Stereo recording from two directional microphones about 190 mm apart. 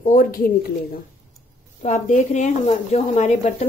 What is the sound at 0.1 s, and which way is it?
Speech, 45° left (ahead or behind).